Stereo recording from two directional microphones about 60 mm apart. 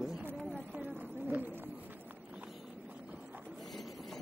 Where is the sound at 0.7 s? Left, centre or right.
Right.